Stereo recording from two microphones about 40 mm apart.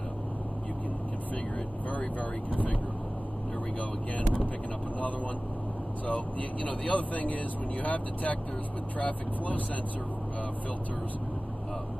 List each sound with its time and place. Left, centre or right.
1.9 s speech: left
6.0 s speech: left